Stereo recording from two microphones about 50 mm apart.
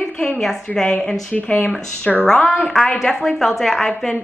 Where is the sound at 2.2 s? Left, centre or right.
Centre.